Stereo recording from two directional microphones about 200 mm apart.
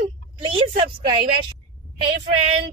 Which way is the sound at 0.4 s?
25° right (ahead or behind).